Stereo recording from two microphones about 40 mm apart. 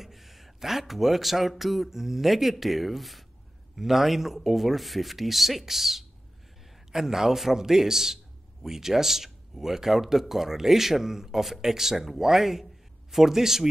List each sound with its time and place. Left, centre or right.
0.0 s speech: centre